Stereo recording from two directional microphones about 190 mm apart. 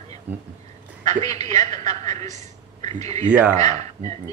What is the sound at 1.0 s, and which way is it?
A man's voice, 40° right (ahead or behind).